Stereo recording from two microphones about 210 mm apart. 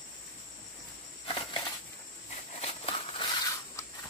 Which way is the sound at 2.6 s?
30° left (ahead or behind).